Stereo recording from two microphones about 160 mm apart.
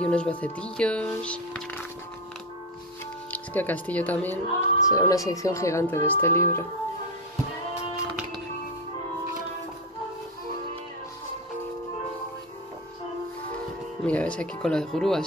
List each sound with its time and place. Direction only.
0.0 s speech: 5° left (ahead or behind)
3.3 s speech: 10° left (ahead or behind)
14.0 s speech: 10° left (ahead or behind)